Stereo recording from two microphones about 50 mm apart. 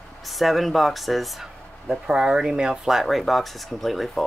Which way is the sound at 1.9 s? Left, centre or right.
Centre.